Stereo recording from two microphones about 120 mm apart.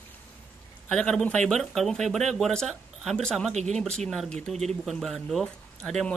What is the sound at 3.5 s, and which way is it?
Speech, 70° right (ahead or behind).